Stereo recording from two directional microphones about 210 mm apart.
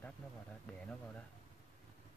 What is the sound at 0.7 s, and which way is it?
Speech, 5° left (ahead or behind).